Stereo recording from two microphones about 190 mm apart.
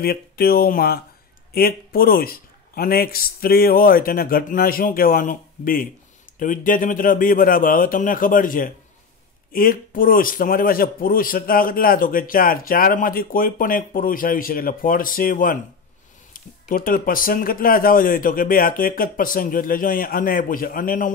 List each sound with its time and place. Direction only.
0.0 s a man's voice: 55° left (ahead or behind)